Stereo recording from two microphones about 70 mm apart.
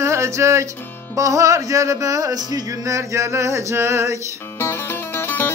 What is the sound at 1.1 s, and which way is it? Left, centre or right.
Music, right.